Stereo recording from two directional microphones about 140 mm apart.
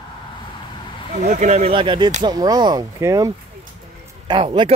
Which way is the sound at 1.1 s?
60° right (ahead or behind).